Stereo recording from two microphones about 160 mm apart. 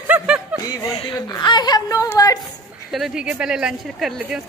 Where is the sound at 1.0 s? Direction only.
25° left (ahead or behind).